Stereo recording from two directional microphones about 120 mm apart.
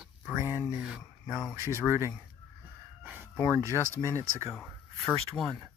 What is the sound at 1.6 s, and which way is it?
Speech, 20° right (ahead or behind).